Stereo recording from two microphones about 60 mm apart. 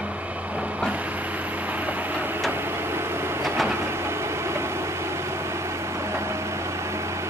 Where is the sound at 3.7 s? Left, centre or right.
Right.